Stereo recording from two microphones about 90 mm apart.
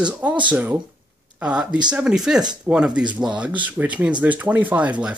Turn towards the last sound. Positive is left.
turn(degrees=-15)  # may be behind; listen again after turning